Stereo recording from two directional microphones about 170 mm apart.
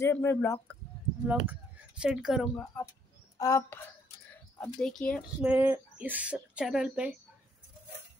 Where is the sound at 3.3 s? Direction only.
20° left (ahead or behind).